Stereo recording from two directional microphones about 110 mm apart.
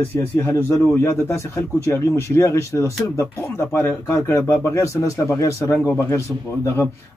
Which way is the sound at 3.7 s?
20° left (ahead or behind).